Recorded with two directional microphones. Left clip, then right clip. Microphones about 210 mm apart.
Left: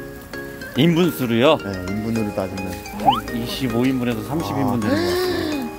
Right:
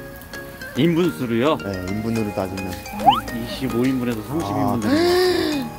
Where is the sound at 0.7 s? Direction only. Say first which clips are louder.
Left 1 dB; 50° left (ahead or behind).